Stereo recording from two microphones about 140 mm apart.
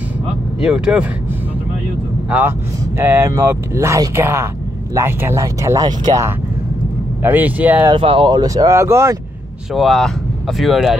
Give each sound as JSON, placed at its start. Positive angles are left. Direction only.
{"t": 0.6, "sound": "speech", "side_deg": -5}
{"t": 3.0, "sound": "speech", "side_deg": -15}
{"t": 7.2, "sound": "speech", "side_deg": -10}
{"t": 7.9, "sound": "speech", "side_deg": -40}
{"t": 9.8, "sound": "speech", "side_deg": 0}